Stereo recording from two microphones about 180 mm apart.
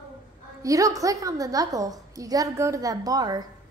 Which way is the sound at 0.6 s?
20° right (ahead or behind).